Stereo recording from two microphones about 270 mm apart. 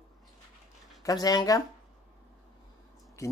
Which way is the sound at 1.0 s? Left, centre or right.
Centre.